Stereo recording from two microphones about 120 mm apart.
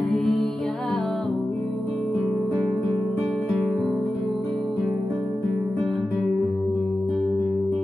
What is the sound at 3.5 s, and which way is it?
Music, centre (ahead or behind).